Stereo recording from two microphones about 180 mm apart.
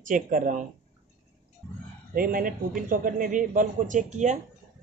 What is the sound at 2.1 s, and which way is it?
Speech, 50° right (ahead or behind).